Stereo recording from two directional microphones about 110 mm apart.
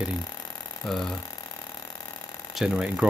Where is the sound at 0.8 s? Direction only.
Centre (ahead or behind).